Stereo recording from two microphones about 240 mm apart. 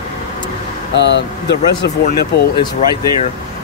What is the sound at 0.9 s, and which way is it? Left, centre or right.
Speech, left.